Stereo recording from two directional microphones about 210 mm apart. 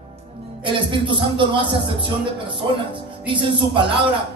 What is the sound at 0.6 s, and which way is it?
Speech, 25° right (ahead or behind).